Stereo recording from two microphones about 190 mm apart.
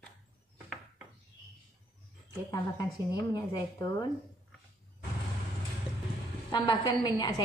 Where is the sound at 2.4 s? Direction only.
20° left (ahead or behind).